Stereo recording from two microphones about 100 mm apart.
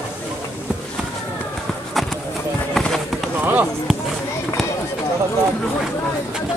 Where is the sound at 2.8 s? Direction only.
5° left (ahead or behind).